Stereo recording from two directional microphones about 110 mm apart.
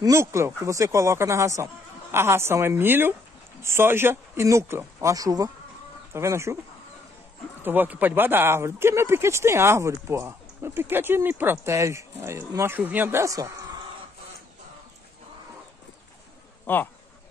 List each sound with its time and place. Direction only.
0.0 s speech: 25° right (ahead or behind)
7.6 s speech: 15° right (ahead or behind)
16.6 s speech: 15° left (ahead or behind)